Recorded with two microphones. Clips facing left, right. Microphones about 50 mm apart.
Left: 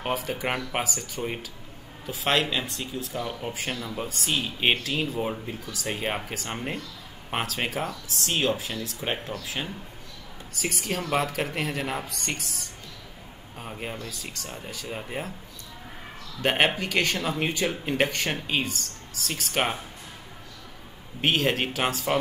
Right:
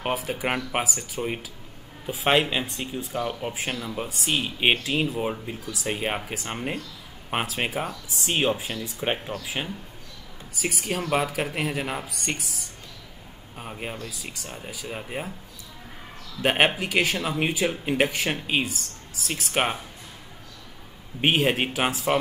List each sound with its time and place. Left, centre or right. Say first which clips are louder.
0.1 s speech: right 1 dB; centre
10.5 s speech: right 1 dB; centre
16.3 s speech: right 2 dB; centre
21.2 s speech: right 2 dB; centre